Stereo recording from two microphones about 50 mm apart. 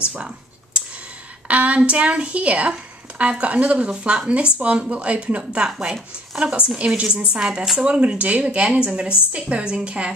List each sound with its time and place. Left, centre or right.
0.0 s speech: right
1.5 s a woman's voice: right